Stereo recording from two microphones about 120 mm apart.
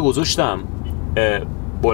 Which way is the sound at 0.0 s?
15° left (ahead or behind).